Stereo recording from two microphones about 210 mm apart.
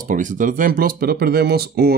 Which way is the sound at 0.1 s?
40° right (ahead or behind).